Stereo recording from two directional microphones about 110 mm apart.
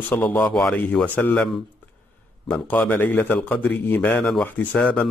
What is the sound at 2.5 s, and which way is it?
Speech, 15° left (ahead or behind).